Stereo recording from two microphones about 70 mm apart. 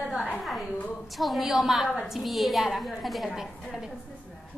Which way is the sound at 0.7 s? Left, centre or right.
Left.